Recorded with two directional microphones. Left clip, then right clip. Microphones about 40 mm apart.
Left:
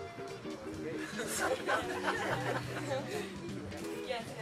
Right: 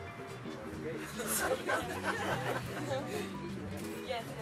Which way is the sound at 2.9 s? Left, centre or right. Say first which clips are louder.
Right 1 dB; centre.